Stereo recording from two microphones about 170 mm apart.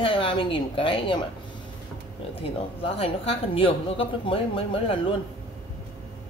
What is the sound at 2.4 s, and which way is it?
A woman's voice, 35° left (ahead or behind).